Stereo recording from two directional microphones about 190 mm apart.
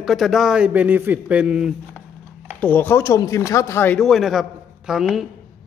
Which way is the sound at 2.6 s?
10° left (ahead or behind).